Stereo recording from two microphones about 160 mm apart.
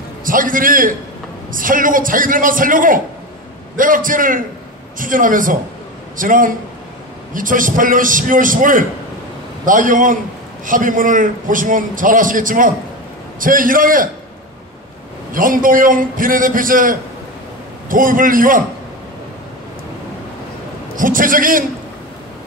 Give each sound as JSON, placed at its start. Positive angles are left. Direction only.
{"t": 0.2, "sound": "a man's voice", "side_deg": -60}
{"t": 15.3, "sound": "a man's voice", "side_deg": -60}
{"t": 20.9, "sound": "a man's voice", "side_deg": -60}